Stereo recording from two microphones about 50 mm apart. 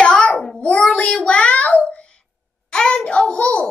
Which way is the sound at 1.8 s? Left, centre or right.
Centre.